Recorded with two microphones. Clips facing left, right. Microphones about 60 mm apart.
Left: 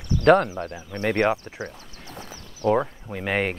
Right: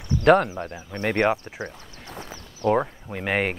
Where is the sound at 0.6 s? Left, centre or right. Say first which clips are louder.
Left 1 dB; right.